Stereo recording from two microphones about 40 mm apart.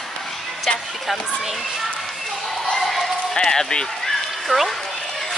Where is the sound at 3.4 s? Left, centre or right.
Centre.